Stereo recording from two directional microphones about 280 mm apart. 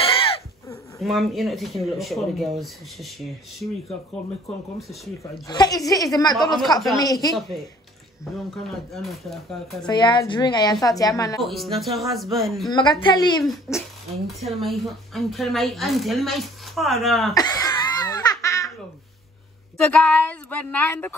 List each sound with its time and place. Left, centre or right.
0.0 s goat: centre
1.0 s speech: centre
4.7 s speech: centre
5.5 s a woman's voice: centre
8.6 s speech: centre
9.8 s a woman's voice: centre
11.4 s speech: centre
13.0 s a woman's voice: centre
17.3 s laughter: centre
19.9 s speech: centre